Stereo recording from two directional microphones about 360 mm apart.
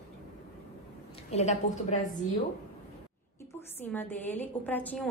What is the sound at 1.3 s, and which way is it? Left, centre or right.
Speech, centre.